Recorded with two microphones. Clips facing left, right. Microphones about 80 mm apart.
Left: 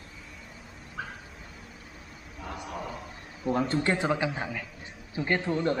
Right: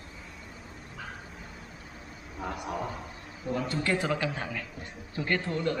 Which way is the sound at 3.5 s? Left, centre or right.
Left.